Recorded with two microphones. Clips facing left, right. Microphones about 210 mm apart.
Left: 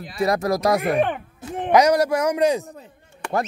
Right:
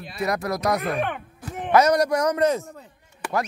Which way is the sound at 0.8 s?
15° left (ahead or behind).